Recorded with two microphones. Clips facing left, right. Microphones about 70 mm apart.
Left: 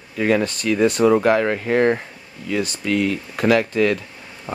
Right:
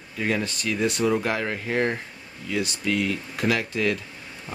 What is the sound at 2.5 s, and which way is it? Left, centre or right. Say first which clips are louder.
Speech: left 4 dB; left.